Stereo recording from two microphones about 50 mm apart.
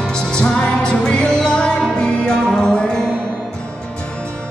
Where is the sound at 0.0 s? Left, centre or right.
Centre.